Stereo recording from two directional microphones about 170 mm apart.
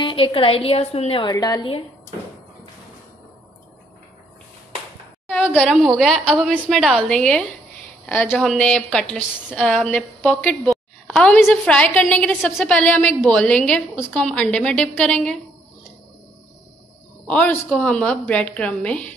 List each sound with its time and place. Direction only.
0.0 s a woman's voice: 30° left (ahead or behind)
5.3 s a sound: 10° left (ahead or behind)
5.6 s a woman's voice: centre (ahead or behind)
17.3 s a woman's voice: 10° left (ahead or behind)